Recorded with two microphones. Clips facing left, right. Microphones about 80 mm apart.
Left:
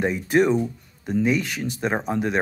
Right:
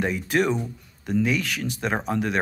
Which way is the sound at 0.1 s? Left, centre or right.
Left.